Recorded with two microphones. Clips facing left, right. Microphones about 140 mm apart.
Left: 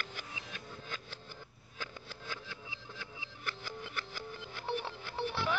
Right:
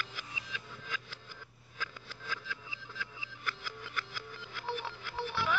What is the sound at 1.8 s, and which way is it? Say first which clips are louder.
Sniff: even; 30° left (ahead or behind).